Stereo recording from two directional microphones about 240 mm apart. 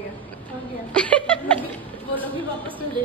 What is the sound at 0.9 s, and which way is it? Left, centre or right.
Chuckle, centre.